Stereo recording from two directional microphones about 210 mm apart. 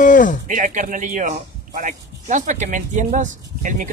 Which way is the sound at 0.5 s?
35° right (ahead or behind).